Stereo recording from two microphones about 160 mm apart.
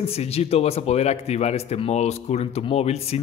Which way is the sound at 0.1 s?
40° left (ahead or behind).